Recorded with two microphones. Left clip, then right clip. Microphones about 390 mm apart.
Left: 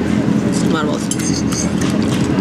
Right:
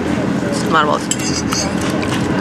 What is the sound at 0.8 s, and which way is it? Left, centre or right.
Cutlery, centre.